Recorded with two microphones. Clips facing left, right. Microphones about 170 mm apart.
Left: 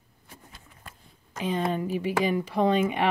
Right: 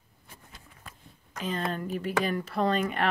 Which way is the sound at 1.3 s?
15° left (ahead or behind).